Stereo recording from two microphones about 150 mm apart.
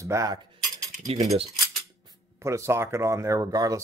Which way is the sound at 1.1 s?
45° right (ahead or behind).